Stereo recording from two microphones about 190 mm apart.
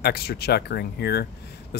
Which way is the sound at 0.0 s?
55° left (ahead or behind).